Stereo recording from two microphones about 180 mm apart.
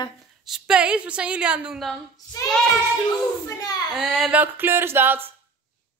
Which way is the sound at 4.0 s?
Centre (ahead or behind).